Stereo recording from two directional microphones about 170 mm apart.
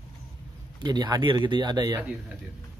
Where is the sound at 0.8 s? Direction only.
25° right (ahead or behind).